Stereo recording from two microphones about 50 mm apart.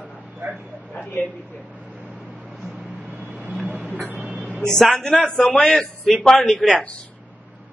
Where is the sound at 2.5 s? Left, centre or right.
Centre.